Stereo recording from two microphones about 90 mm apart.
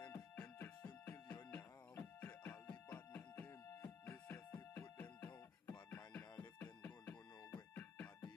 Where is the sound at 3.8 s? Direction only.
30° left (ahead or behind).